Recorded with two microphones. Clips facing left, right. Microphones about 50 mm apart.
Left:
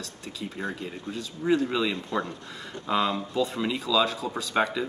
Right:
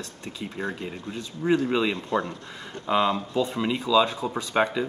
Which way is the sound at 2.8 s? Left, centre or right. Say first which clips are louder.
Right 3 dB; centre.